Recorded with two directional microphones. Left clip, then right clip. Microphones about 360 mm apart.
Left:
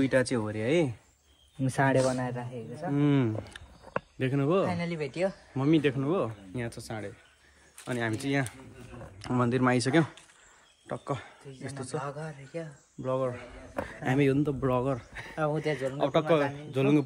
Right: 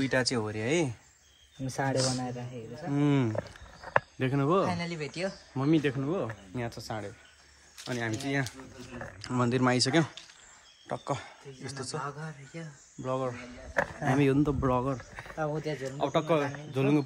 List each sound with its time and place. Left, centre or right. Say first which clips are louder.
0.0 s speech: left 2 dB; centre
1.6 s speech: left 5 dB; left
2.9 s speech: left 1 dB; centre
15.3 s speech: left 3 dB; left
16.0 s speech: left 2 dB; centre